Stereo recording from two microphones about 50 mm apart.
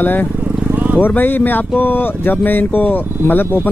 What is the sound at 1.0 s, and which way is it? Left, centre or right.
Speech, left.